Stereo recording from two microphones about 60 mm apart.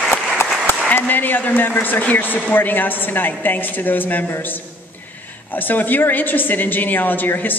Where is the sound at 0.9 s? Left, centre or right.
Left.